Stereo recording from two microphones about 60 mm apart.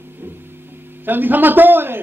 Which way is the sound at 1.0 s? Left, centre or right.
Right.